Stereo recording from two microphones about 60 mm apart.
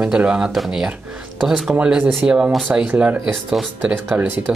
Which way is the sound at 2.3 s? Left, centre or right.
Right.